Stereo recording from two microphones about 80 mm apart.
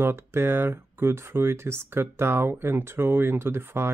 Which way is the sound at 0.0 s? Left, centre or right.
Right.